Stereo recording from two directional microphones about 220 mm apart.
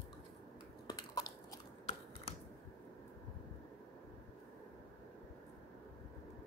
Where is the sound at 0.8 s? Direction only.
15° left (ahead or behind).